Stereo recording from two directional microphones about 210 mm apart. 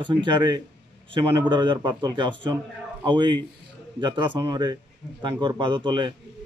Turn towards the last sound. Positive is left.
turn(degrees=-20)  # may be behind; listen again after turning